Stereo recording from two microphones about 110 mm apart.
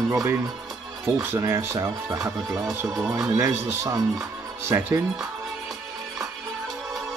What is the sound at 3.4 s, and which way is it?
Speech, 20° right (ahead or behind).